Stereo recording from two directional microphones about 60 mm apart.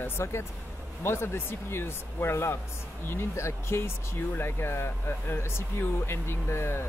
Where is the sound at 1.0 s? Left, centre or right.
Left.